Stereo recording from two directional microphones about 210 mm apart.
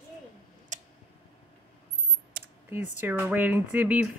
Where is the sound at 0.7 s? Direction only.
35° right (ahead or behind).